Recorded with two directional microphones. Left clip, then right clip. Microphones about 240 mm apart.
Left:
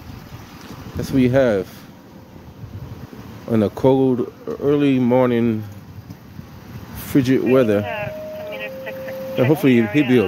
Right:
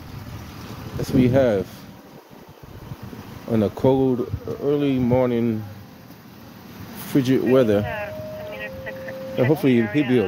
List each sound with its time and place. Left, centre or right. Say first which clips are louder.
1.0 s speech: left 2 dB; centre
3.4 s speech: left 3 dB; left
7.1 s a sound: left 2 dB; centre